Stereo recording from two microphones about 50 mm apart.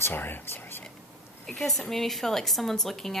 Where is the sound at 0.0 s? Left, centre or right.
Left.